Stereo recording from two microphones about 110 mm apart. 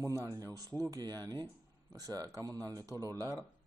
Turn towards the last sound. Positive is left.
turn(degrees=-30)  # may be behind; listen again after turning